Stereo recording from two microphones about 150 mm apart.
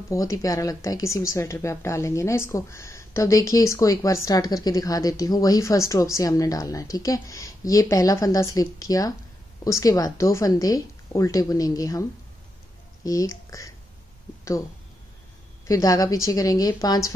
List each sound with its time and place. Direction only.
0.1 s speech: 20° left (ahead or behind)
15.6 s speech: 20° left (ahead or behind)